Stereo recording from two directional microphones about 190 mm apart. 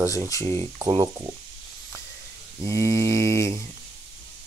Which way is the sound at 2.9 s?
25° right (ahead or behind).